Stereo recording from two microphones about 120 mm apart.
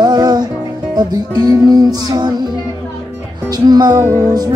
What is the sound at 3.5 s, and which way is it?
Speech, 35° right (ahead or behind).